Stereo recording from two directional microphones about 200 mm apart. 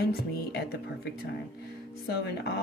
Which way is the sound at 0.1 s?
55° left (ahead or behind).